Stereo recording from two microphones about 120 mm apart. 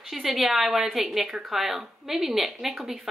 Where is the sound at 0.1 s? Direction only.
5° right (ahead or behind).